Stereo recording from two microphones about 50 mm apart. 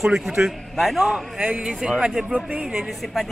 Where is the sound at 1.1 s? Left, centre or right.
Centre.